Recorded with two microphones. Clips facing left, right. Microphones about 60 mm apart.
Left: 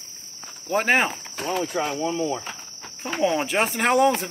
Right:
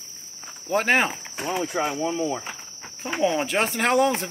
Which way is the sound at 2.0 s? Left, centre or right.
Right.